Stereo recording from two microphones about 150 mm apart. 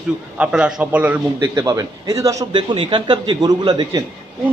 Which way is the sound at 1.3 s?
25° right (ahead or behind).